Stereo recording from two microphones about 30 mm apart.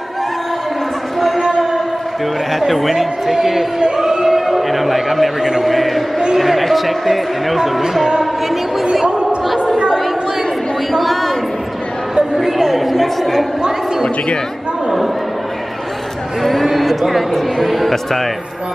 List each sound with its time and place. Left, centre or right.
2.5 s speech: centre
4.0 s music: centre
4.4 s a man's voice: centre
9.0 s a sound: right
10.9 s a sound: centre
12.4 s speech: centre
16.6 s speech: centre